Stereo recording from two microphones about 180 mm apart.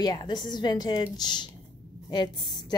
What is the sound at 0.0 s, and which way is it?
A woman's voice, 20° left (ahead or behind).